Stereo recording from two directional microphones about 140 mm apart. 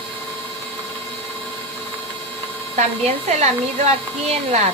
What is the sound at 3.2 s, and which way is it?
A woman's voice, 55° right (ahead or behind).